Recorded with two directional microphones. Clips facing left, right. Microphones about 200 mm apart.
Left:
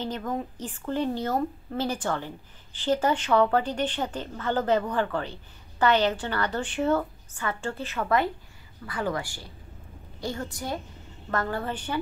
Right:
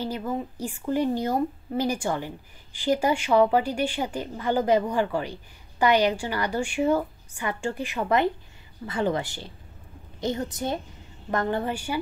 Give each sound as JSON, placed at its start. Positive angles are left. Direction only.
{"t": 0.0, "sound": "a woman's voice", "side_deg": -10}